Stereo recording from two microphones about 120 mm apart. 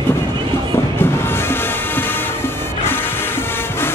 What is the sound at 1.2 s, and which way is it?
Music, 20° left (ahead or behind).